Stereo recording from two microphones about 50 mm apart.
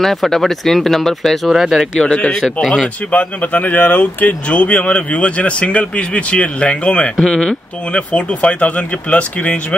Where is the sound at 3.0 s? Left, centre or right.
Left.